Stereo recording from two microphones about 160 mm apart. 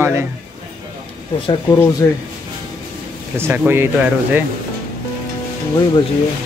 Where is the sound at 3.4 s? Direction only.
15° right (ahead or behind).